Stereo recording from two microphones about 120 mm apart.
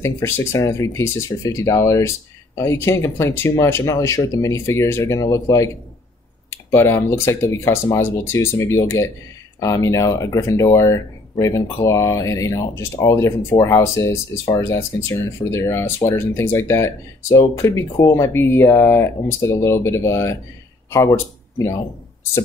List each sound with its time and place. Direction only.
0.0 s speech: 25° left (ahead or behind)